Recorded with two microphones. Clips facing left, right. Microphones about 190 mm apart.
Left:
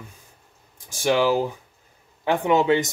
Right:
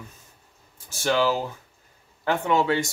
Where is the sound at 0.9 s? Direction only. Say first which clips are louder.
Left 3 dB; 15° left (ahead or behind).